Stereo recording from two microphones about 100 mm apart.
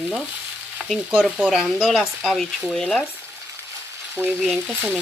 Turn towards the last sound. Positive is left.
turn(degrees=-15)  # may be behind; listen again after turning